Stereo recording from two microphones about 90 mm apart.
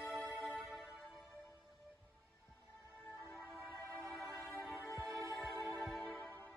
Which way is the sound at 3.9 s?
Centre (ahead or behind).